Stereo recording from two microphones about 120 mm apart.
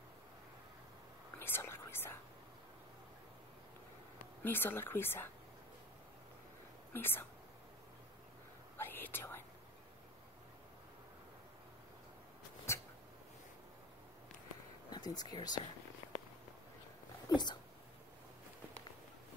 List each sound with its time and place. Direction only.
1.4 s whispering: 20° left (ahead or behind)
4.4 s speech: 15° left (ahead or behind)
6.9 s speech: 20° left (ahead or behind)
8.7 s whispering: 20° left (ahead or behind)
12.7 s a sound: 25° left (ahead or behind)
14.9 s speech: 35° left (ahead or behind)
17.3 s speech: 40° left (ahead or behind)